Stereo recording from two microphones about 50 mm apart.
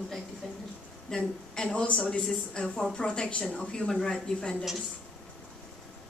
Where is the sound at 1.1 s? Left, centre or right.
Centre.